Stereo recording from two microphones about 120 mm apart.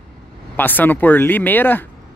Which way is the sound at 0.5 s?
15° left (ahead or behind).